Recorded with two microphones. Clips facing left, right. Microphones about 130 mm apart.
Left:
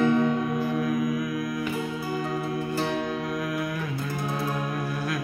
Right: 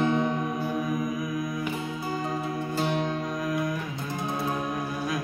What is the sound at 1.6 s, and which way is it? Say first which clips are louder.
Music: left 2 dB; 20° right (ahead or behind).